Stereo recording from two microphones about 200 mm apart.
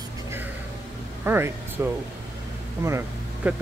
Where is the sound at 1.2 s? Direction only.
10° right (ahead or behind).